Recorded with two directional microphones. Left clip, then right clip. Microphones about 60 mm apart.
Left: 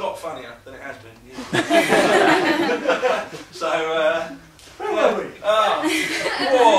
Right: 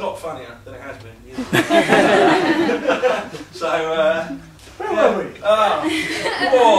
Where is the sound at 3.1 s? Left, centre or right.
Centre.